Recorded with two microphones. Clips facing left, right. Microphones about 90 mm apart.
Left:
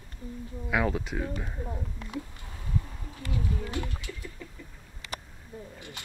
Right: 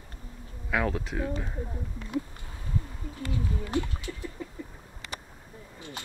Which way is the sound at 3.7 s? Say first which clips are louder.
Right 5 dB; 25° right (ahead or behind).